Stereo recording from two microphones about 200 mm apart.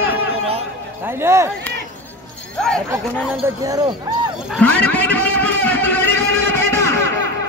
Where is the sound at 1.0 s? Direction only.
10° right (ahead or behind).